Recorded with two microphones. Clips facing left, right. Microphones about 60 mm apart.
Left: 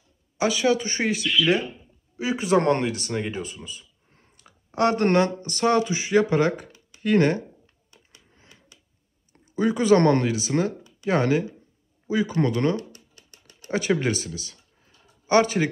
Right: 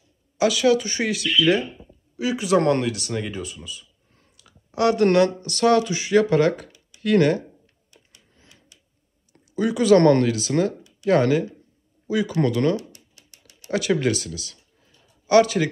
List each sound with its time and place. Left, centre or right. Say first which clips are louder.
0.4 s speech: right 3 dB; left
8.4 s a sound: even; left
9.6 s speech: right 2 dB; left